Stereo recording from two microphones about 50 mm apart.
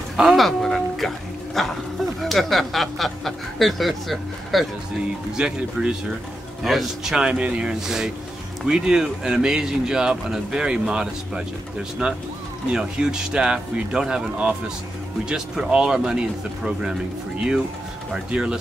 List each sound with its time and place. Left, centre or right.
0.4 s music: centre
2.2 s speech: centre
5.4 s speech: centre
6.6 s a man's voice: centre
7.2 s speech: right
7.8 s speech: centre
12.7 s speech: centre
18.3 s speech: centre